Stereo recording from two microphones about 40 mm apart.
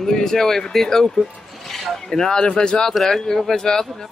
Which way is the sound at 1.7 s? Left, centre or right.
Centre.